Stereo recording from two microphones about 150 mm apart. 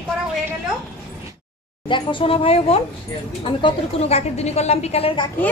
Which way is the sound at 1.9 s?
30° left (ahead or behind).